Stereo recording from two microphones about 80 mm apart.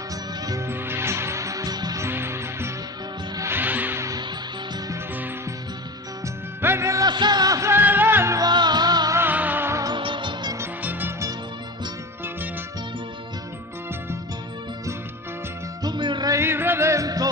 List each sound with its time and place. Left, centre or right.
0.7 s music: right
2.0 s music: right
3.5 s music: right
6.2 s music: right
7.1 s music: right
7.7 s music: right
8.5 s music: right
9.3 s music: right
9.9 s music: right
10.8 s music: right
15.8 s music: right
16.3 s music: right
17.0 s music: right